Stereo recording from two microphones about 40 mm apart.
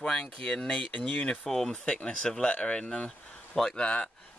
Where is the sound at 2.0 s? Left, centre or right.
Left.